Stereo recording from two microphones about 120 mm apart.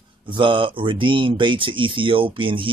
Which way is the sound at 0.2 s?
45° right (ahead or behind).